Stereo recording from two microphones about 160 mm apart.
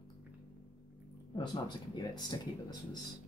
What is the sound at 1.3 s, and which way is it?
Speech, 25° left (ahead or behind).